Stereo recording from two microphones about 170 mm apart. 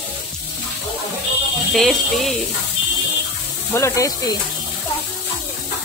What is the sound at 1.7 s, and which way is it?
Speech, centre (ahead or behind).